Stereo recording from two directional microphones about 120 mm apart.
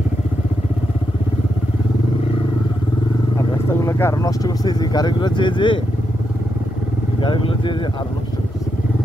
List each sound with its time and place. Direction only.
3.3 s speech: 25° left (ahead or behind); by 5.8 s 40° left (ahead or behind)
7.2 s speech: 45° left (ahead or behind)